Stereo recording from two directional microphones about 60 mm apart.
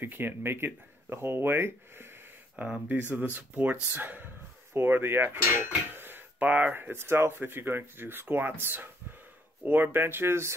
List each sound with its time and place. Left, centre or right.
0.0 s cutlery: right
2.5 s speech: right
3.9 s cutlery: right